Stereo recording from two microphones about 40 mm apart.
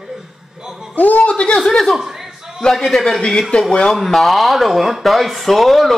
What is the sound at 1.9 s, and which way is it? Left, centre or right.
Chuckle, centre.